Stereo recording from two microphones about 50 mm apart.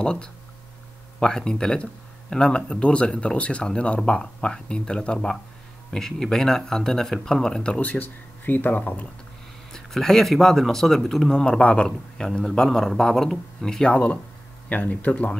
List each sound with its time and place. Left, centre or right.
0.0 s a man's voice: centre
7.8 s speech: left
9.7 s speech: centre
11.3 s a man's voice: centre
13.9 s speech: left